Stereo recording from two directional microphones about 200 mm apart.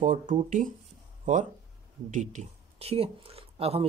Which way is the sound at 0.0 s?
40° right (ahead or behind).